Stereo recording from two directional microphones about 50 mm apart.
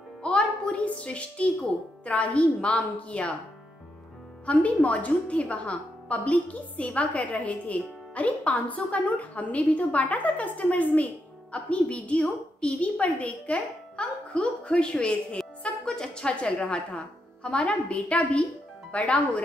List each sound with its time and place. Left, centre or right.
0.2 s a child's voice: centre
4.5 s a woman's voice: left